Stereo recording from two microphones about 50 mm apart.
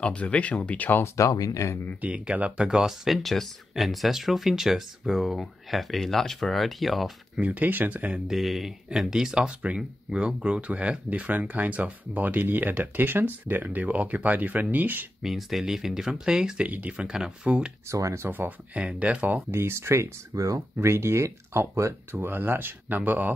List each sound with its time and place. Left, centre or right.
0.0 s speech: left
1.0 s speech: left
2.0 s speech: right
2.7 s speech: centre
7.4 s speech: right
8.3 s speech: centre; by 15.0 s right
15.2 s speech: centre
16.6 s speech: right
17.8 s speech: right
18.7 s speech: right
19.5 s speech: right
22.1 s speech: right
22.9 s speech: right